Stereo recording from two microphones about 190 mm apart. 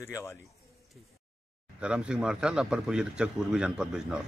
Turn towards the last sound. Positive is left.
turn(degrees=-5)  # may be behind; listen again after turning